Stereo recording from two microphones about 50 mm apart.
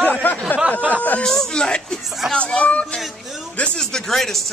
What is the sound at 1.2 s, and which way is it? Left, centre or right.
Speech, centre.